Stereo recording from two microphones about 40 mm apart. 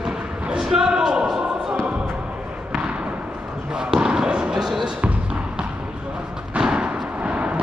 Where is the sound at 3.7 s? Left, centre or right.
Centre.